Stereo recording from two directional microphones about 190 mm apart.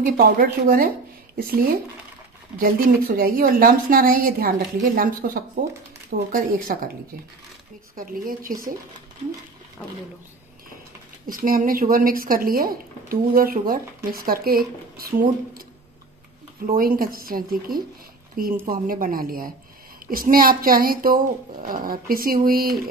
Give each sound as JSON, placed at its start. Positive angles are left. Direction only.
{"t": 0.0, "sound": "speech", "side_deg": -50}
{"t": 7.9, "sound": "speech", "side_deg": -50}
{"t": 11.2, "sound": "speech", "side_deg": -50}
{"t": 16.6, "sound": "speech", "side_deg": -50}